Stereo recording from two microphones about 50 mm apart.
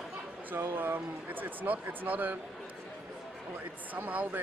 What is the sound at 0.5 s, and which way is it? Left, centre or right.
Speech, right.